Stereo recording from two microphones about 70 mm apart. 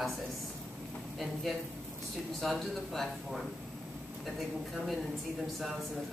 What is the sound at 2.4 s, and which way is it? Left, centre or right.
Speech, centre.